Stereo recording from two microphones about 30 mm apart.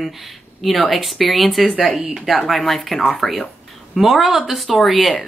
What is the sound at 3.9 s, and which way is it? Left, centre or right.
Speech, centre.